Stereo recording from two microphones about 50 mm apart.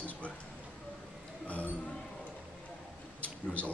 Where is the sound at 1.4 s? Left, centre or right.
Left.